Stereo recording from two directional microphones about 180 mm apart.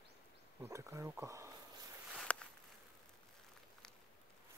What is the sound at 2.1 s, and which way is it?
Walk, 5° left (ahead or behind).